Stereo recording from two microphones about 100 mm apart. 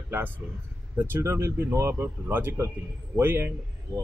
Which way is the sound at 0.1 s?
20° right (ahead or behind).